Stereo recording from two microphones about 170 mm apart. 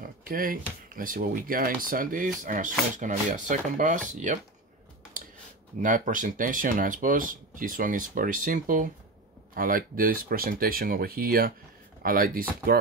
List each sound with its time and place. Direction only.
0.0 s speech: 55° right (ahead or behind)
5.8 s speech: 50° right (ahead or behind)